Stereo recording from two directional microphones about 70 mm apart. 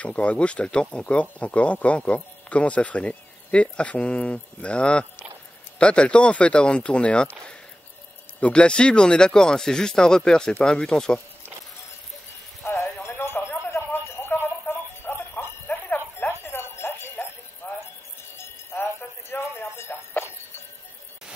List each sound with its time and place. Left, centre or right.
0.0 s speech: centre
8.4 s speech: centre
12.6 s music: left
13.0 s a sound: left
17.6 s music: left
18.4 s music: left